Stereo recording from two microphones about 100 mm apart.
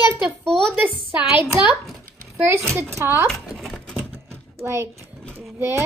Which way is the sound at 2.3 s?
25° right (ahead or behind).